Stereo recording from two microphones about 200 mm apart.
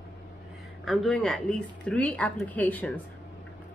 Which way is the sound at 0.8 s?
Centre (ahead or behind).